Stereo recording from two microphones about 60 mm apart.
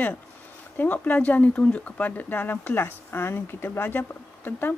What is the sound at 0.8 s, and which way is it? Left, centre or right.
Speech, left.